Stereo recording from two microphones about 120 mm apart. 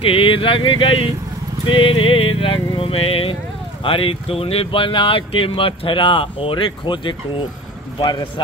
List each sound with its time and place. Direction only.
0.0 s a man's voice: 50° left (ahead or behind)